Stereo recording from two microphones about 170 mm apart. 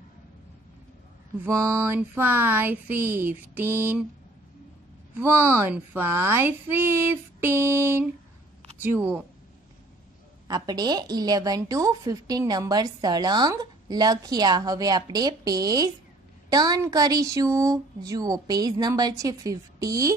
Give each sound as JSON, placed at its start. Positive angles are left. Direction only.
{"t": 1.4, "sound": "speech", "side_deg": -15}
{"t": 5.1, "sound": "speech", "side_deg": -15}
{"t": 10.5, "sound": "a woman's voice", "side_deg": -25}